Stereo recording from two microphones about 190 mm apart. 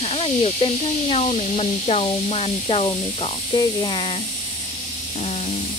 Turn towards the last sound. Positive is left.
turn(degrees=35)  # may be behind; listen again after turning